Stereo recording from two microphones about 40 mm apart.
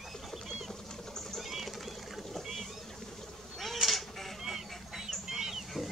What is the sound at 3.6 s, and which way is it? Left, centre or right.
Creak, centre.